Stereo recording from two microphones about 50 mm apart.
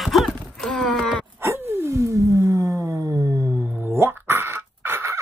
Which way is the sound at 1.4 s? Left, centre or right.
Right.